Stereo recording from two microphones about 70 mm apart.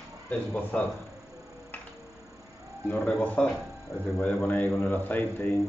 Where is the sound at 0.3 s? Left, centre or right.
Left.